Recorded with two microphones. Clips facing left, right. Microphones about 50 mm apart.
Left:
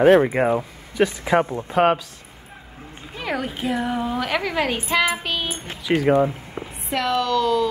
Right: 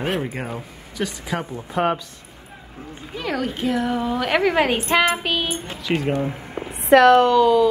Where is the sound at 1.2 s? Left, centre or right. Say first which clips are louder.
Left 8 dB; left.